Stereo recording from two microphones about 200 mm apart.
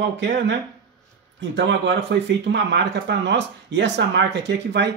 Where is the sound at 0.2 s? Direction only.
60° right (ahead or behind).